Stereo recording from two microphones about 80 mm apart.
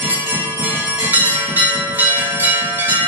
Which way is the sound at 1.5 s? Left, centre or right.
Right.